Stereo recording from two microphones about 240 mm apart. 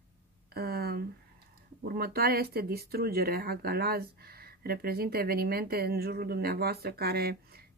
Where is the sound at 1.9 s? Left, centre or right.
Right.